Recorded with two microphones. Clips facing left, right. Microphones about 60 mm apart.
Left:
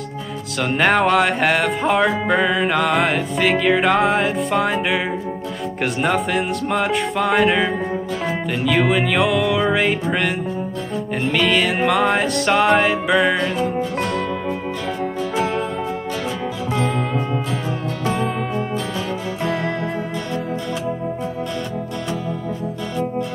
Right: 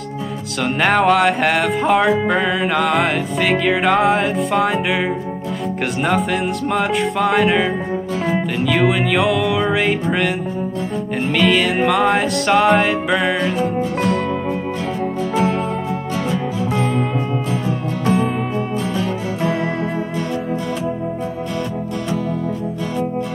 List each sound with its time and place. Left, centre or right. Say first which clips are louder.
0.7 s music: right 1 dB; centre
6.0 s music: right 2 dB; centre
11.3 s music: right 3 dB; centre